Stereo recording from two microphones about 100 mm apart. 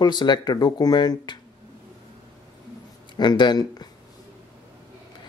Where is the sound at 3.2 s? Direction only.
50° left (ahead or behind).